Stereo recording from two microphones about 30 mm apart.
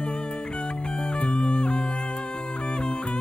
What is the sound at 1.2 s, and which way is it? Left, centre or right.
Music, left.